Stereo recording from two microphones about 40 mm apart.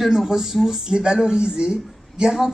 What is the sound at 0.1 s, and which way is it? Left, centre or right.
Speech, centre.